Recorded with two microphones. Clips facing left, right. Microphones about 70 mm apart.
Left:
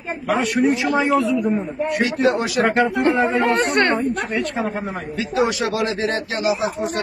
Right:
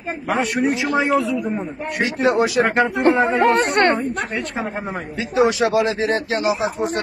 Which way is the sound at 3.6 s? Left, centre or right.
Right.